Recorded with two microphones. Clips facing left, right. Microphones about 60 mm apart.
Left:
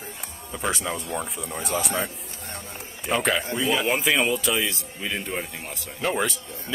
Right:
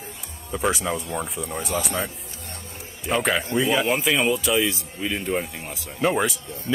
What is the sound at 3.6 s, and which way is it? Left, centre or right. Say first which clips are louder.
Speech: right 4 dB; centre.